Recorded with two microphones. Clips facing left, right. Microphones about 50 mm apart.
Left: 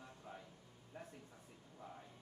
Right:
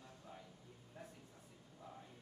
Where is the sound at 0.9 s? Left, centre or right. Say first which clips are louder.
Left 2 dB; left.